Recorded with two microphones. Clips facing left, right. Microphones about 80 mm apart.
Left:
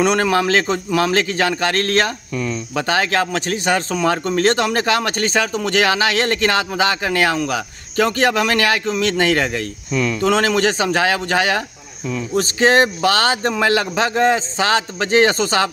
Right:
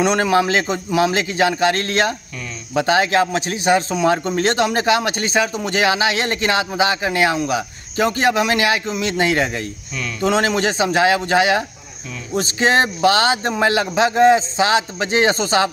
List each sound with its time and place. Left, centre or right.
0.0 s a man's voice: right